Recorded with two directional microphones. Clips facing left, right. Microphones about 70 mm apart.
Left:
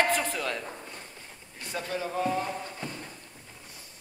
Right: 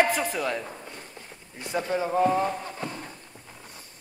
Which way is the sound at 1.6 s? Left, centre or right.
Right.